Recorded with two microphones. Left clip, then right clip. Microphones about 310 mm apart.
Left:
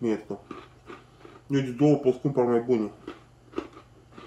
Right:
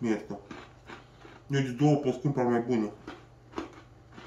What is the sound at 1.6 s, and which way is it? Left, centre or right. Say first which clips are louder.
Speech: left 4 dB; centre.